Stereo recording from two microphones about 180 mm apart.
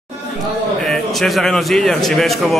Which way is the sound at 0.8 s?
Centre (ahead or behind).